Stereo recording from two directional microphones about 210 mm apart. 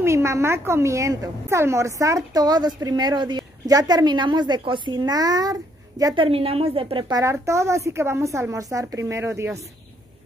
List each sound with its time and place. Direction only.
0.0 s a woman's voice: 15° right (ahead or behind)